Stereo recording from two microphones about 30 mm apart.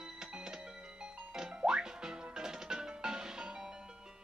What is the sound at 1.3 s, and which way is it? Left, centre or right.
Music, right.